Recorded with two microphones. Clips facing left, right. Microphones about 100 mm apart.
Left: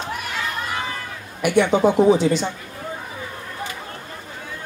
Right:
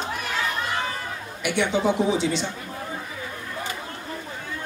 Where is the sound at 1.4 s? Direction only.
45° left (ahead or behind).